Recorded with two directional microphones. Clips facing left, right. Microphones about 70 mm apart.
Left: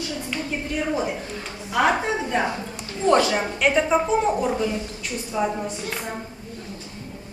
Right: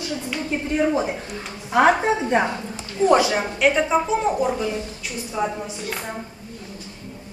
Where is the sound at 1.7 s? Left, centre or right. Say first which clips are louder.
Right 4 dB; right.